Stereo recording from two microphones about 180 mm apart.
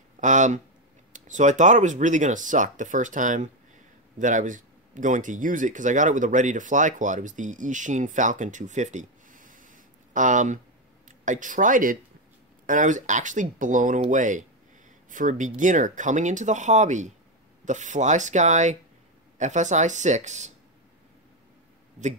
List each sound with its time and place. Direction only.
0.2 s speech: 45° right (ahead or behind)